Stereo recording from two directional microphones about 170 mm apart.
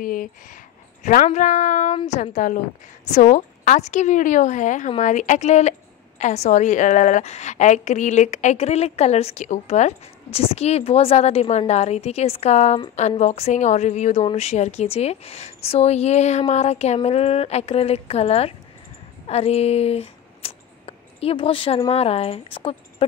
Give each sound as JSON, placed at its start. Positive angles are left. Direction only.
{"t": 0.0, "sound": "a woman's voice", "side_deg": 55}